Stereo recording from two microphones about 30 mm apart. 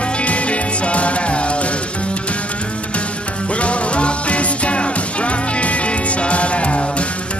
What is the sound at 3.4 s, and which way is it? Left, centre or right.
Music, left.